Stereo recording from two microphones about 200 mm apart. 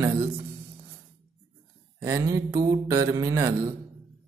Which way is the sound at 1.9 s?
15° right (ahead or behind).